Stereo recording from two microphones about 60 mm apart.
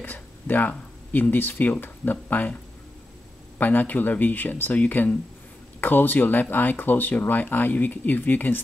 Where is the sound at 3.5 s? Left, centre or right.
Left.